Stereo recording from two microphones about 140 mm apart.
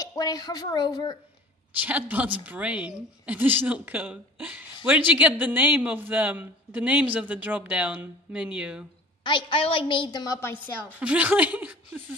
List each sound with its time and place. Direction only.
0.0 s speech: 25° left (ahead or behind)
1.8 s a man's voice: 10° right (ahead or behind)
9.2 s a woman's voice: 35° left (ahead or behind)
11.0 s speech: 10° right (ahead or behind)